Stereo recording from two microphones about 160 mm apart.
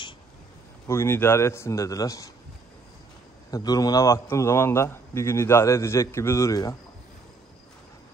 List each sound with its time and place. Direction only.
0.8 s a man's voice: 15° left (ahead or behind)
3.4 s a man's voice: 25° left (ahead or behind)